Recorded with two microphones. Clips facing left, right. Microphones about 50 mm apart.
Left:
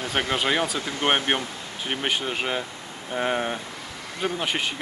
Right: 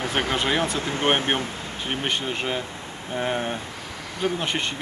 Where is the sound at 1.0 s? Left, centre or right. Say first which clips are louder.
Even; left.